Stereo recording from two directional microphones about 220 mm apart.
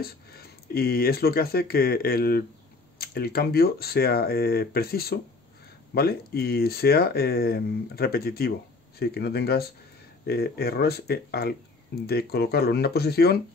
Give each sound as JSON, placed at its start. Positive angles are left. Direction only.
{"t": 0.0, "sound": "speech", "side_deg": 45}